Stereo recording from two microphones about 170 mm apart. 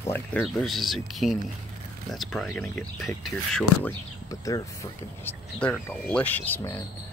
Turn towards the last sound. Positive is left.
turn(degrees=10)  # may be behind; listen again after turning